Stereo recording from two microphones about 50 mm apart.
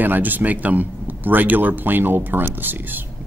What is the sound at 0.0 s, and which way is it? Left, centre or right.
A man's voice, right.